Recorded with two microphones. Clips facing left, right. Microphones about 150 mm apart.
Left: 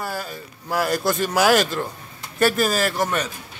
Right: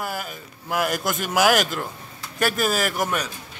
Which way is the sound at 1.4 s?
Centre (ahead or behind).